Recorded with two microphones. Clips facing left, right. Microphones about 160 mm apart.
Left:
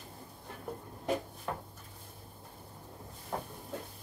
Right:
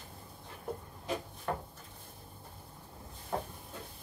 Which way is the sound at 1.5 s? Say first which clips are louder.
Right 3 dB; 5° left (ahead or behind).